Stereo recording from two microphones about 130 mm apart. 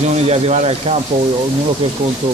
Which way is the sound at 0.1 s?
55° right (ahead or behind).